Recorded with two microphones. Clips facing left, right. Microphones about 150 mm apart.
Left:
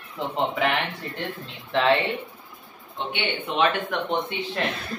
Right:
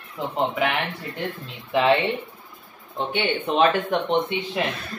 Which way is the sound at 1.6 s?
10° right (ahead or behind).